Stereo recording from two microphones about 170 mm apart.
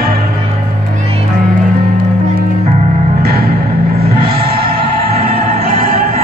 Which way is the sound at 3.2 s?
65° right (ahead or behind).